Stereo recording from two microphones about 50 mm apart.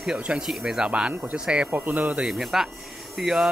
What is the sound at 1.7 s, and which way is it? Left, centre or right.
Speech, right.